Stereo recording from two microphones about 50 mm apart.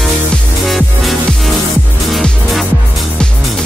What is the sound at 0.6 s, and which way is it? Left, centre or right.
Music, centre.